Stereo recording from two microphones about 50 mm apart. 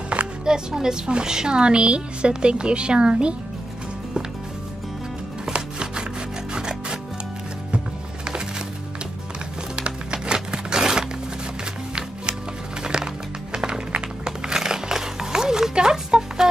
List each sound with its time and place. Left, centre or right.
0.1 s a woman's voice: centre
5.4 s chopping: centre
6.5 s music: centre
9.8 s music: centre
12.8 s music: centre